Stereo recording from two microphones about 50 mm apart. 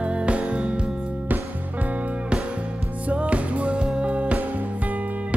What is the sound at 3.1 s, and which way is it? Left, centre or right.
Music, right.